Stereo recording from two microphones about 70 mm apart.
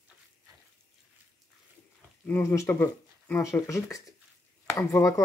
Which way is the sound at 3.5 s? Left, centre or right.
Left.